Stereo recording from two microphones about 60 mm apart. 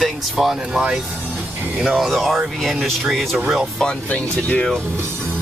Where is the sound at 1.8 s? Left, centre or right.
Centre.